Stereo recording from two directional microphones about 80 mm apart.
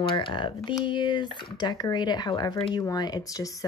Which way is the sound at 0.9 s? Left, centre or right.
Left.